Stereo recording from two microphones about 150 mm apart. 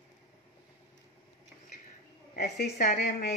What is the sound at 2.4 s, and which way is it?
Speech, 70° left (ahead or behind).